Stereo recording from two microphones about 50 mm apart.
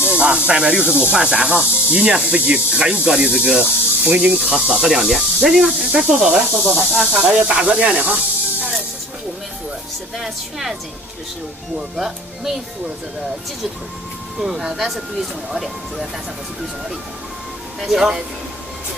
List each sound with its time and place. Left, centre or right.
0.0 s speech: right
4.0 s speech: right
4.6 s speech: centre
7.2 s speech: centre
10.1 s speech: centre
14.4 s speech: centre
17.7 s speech: centre